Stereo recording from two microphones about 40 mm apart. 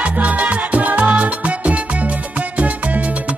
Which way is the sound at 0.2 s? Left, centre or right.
Right.